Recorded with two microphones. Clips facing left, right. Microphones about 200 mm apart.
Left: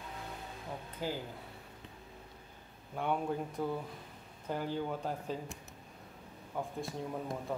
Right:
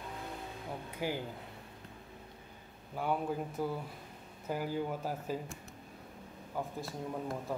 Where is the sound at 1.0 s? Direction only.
15° right (ahead or behind).